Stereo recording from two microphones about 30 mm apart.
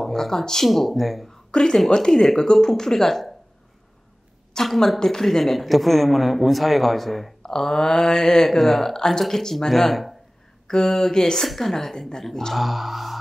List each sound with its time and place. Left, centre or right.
0.1 s mantra: centre
0.7 s speech: centre
1.5 s a woman's voice: left
2.5 s mantra: centre
4.7 s speech: centre
7.4 s mantra: centre
8.5 s mantra: centre
9.7 s mantra: centre
11.4 s mantra: centre
12.5 s speech: centre